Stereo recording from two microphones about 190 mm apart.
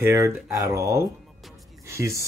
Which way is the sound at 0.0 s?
15° right (ahead or behind).